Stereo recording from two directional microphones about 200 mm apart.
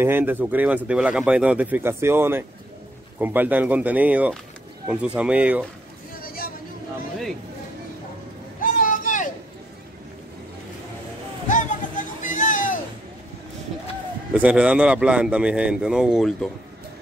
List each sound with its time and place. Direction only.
0.0 s speech: 10° right (ahead or behind)
6.1 s vehicle: 45° left (ahead or behind)
8.5 s vehicle: 40° left (ahead or behind)
11.4 s a sound: 40° left (ahead or behind)
14.3 s a man's voice: 5° right (ahead or behind)